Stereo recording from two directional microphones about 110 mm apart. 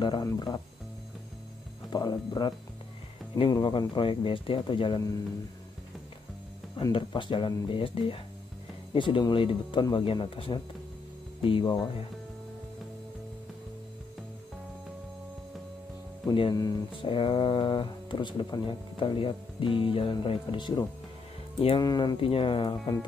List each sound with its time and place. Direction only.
0.0 s speech: 45° left (ahead or behind)
0.3 s speech: 35° left (ahead or behind)
1.9 s speech: 40° left (ahead or behind)
6.9 s speech: 50° left (ahead or behind)
11.6 s speech: 35° left (ahead or behind)
16.3 s speech: 45° left (ahead or behind)
22.2 s speech: 55° left (ahead or behind)